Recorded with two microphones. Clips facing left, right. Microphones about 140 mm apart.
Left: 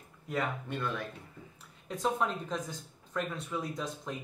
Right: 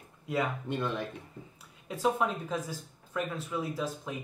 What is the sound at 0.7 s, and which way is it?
Speech, 20° right (ahead or behind).